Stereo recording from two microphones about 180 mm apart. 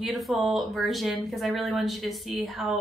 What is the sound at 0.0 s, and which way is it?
Speech, centre (ahead or behind).